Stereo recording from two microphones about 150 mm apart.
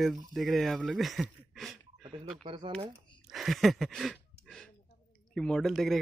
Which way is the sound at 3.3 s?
Centre (ahead or behind).